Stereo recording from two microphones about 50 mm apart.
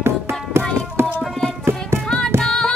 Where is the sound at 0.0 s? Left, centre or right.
Right.